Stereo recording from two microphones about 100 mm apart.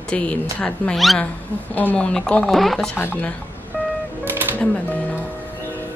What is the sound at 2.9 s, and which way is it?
Speech, 20° left (ahead or behind).